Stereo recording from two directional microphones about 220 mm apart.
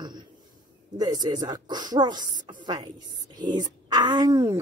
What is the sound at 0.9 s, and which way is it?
A woman's voice, 20° right (ahead or behind).